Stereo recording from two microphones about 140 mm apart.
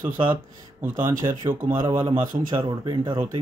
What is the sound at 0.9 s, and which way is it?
Speech, 75° right (ahead or behind).